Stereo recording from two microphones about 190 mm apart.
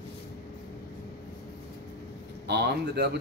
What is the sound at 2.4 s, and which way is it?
Speech, 60° right (ahead or behind).